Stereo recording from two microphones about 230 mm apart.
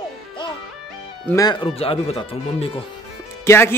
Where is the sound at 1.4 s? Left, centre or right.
Centre.